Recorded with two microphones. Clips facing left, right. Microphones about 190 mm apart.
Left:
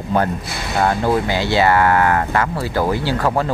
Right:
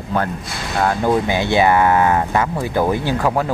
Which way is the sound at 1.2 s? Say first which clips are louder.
Right 1 dB; 20° right (ahead or behind).